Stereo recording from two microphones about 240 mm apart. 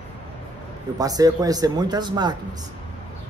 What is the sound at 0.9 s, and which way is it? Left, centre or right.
A man's voice, centre.